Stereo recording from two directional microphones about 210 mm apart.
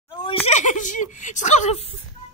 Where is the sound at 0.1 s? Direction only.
25° left (ahead or behind).